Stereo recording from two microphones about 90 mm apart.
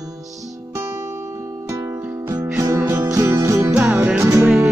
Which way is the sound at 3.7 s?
15° right (ahead or behind).